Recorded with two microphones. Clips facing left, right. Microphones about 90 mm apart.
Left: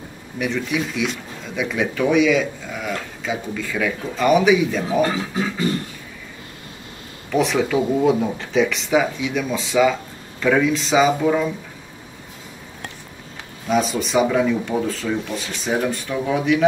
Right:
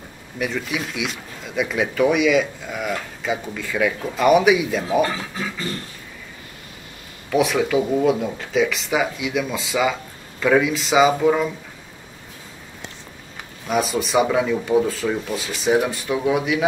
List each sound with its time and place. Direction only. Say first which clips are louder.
0.4 s speech: left 2 dB; centre (ahead or behind)
5.0 s speech: left 3 dB; 20° left (ahead or behind)
7.2 s speech: even; 5° right (ahead or behind)
13.7 s speech: left 1 dB; 5° right (ahead or behind)